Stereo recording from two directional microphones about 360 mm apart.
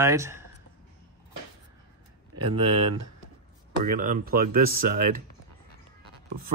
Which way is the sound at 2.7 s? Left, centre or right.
Right.